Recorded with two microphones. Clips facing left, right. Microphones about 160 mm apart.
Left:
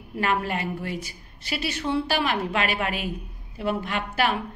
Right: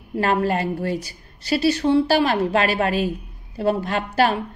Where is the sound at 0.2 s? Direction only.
35° right (ahead or behind).